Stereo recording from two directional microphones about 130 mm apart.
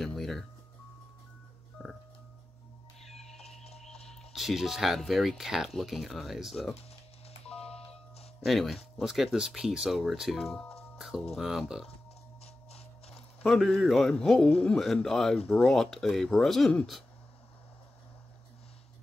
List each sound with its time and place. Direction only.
0.0 s music: centre (ahead or behind)
1.8 s telephone dialing: 5° right (ahead or behind)
3.0 s bird: 5° left (ahead or behind)
4.1 s speech: centre (ahead or behind)
7.5 s music: 50° left (ahead or behind)
8.5 s speech: centre (ahead or behind)
13.1 s a man's voice: 5° left (ahead or behind)